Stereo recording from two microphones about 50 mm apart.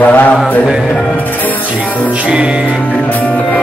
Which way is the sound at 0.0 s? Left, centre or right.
Left.